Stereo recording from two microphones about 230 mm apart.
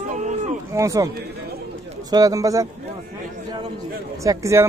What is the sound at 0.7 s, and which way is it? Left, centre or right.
Speech, centre.